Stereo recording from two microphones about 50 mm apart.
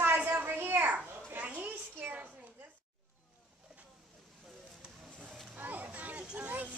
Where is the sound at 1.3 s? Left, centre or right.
Right.